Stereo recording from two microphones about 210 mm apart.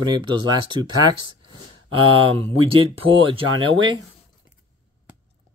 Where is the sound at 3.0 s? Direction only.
25° right (ahead or behind).